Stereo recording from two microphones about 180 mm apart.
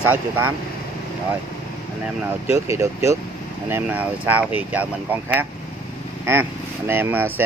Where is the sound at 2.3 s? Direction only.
15° right (ahead or behind).